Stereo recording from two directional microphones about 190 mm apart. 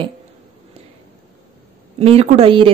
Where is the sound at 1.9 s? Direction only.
35° right (ahead or behind).